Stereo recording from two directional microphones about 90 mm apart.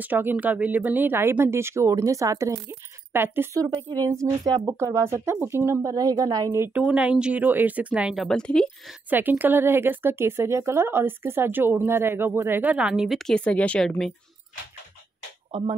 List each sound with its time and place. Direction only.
0.0 s speech: 20° right (ahead or behind)
3.7 s a woman's voice: 45° right (ahead or behind); by 5.9 s 30° right (ahead or behind)
5.9 s a woman's voice: 40° right (ahead or behind)
6.7 s speech: 15° right (ahead or behind)
8.1 s a woman's voice: centre (ahead or behind)
9.1 s speech: 20° right (ahead or behind)
12.7 s speech: 10° right (ahead or behind)
13.3 s a woman's voice: 15° left (ahead or behind)